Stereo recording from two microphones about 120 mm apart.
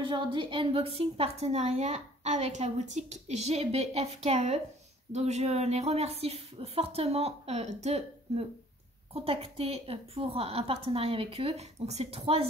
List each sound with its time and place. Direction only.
0.0 s a woman's voice: 40° right (ahead or behind)